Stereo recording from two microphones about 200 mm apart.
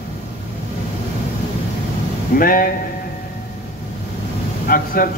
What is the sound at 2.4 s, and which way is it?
Speech, 45° left (ahead or behind).